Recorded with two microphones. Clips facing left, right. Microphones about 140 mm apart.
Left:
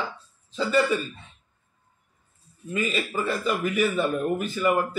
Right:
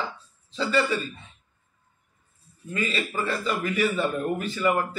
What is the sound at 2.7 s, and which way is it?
A man's voice, 10° left (ahead or behind).